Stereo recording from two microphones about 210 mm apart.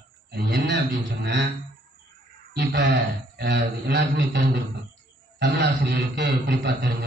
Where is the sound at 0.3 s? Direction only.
55° right (ahead or behind).